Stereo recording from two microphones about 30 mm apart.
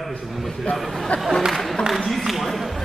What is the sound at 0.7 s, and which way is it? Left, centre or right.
Speech, left.